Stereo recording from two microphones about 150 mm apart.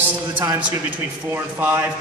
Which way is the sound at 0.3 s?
30° right (ahead or behind).